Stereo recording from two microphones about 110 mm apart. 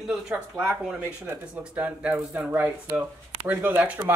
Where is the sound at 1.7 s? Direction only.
10° right (ahead or behind).